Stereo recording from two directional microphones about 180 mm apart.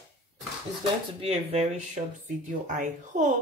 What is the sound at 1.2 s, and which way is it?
Speech, 35° right (ahead or behind).